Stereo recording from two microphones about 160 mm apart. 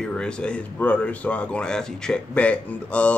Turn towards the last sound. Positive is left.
turn(degrees=10)  # may be behind; listen again after turning